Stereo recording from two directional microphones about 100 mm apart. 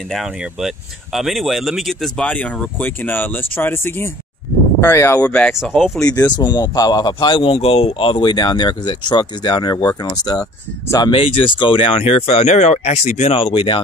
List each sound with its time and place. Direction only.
0.1 s speech: 5° right (ahead or behind); by 5.5 s 15° left (ahead or behind)
5.5 s speech: 5° right (ahead or behind)
6.2 s speech: 45° left (ahead or behind)
11.1 s speech: 65° left (ahead or behind)